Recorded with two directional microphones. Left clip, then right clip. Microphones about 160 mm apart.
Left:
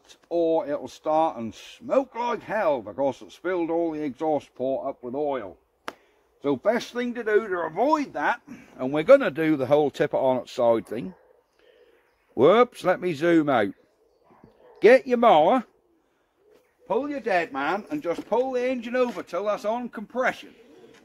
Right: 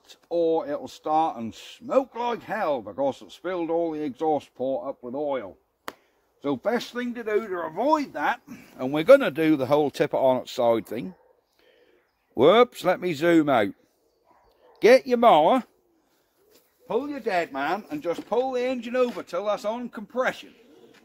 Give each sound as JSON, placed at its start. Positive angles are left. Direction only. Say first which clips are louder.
{"t": 0.0, "sound": "speech", "louder": "even", "side_deg": -40}
{"t": 7.1, "sound": "speech", "louder": "left 4 dB", "side_deg": -20}
{"t": 9.3, "sound": "speech", "louder": "even", "side_deg": -40}
{"t": 12.4, "sound": "speech", "louder": "even", "side_deg": -35}
{"t": 16.8, "sound": "a man's voice", "louder": "left 1 dB", "side_deg": -60}